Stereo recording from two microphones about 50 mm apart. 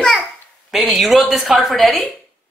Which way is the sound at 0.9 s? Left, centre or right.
Centre.